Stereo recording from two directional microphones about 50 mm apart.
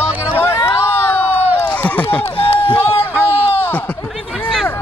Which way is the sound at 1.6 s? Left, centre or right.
Left.